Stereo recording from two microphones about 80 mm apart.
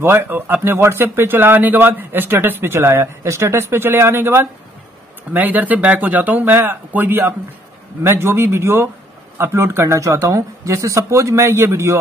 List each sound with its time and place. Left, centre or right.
0.0 s speech: right